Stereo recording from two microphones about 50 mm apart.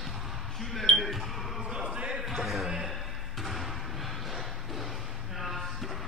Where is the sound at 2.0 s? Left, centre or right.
Centre.